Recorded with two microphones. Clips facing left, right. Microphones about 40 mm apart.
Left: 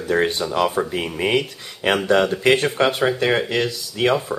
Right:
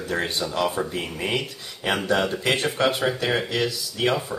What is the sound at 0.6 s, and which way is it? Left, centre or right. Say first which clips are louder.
Speech: left 4 dB; centre.